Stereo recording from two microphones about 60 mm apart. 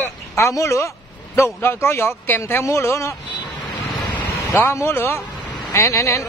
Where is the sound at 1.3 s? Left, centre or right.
Left.